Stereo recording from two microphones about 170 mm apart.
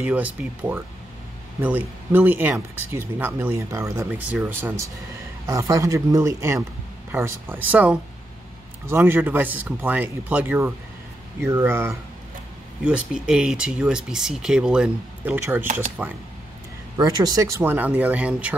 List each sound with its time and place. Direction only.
0.0 s speech: 10° right (ahead or behind)
16.9 s speech: 25° right (ahead or behind); by 18.6 s 10° right (ahead or behind)